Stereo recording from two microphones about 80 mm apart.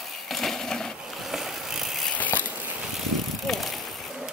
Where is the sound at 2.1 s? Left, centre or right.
Left.